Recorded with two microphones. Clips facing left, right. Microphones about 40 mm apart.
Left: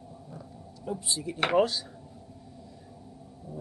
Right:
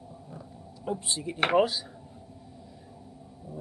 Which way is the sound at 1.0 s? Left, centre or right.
Right.